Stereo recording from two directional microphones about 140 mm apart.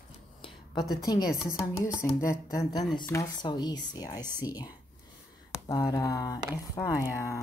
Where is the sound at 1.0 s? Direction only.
30° left (ahead or behind).